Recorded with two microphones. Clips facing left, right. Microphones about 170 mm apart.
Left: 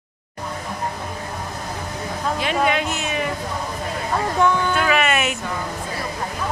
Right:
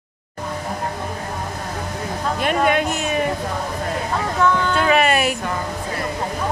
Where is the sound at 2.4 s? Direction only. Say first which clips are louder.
Right 3 dB; 50° right (ahead or behind).